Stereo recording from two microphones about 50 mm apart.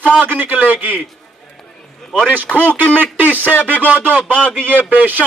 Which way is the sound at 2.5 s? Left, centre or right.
Centre.